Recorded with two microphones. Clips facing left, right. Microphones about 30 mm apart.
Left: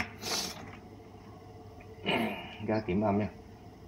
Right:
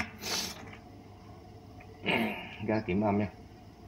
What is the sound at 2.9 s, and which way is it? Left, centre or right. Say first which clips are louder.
Speech: even; centre.